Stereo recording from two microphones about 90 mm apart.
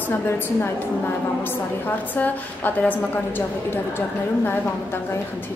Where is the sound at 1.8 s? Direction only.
20° left (ahead or behind).